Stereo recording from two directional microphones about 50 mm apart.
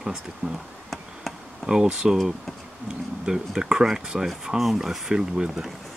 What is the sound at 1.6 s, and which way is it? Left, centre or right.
Speech, centre.